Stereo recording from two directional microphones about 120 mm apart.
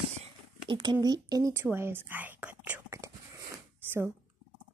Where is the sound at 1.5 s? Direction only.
20° right (ahead or behind).